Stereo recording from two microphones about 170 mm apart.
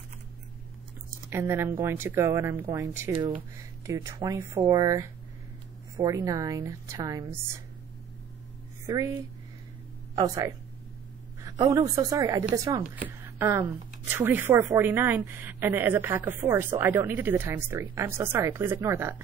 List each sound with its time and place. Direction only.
1.3 s a woman's voice: 15° right (ahead or behind)
8.8 s speech: 15° right (ahead or behind)
10.1 s a woman's voice: 20° right (ahead or behind)